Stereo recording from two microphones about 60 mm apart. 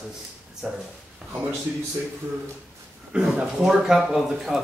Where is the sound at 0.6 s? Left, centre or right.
Centre.